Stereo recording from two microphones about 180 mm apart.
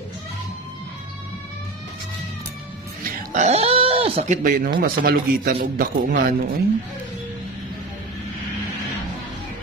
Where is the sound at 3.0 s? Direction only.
45° right (ahead or behind).